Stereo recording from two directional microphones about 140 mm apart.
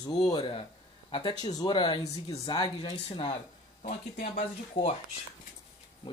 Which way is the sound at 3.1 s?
40° left (ahead or behind).